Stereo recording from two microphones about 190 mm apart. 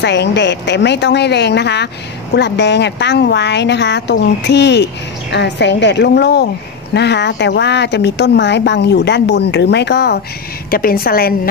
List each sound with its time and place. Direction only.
0.0 s a woman's voice: 65° left (ahead or behind)